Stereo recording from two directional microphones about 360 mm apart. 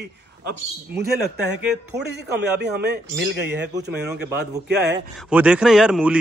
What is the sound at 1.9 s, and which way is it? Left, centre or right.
Speech, right.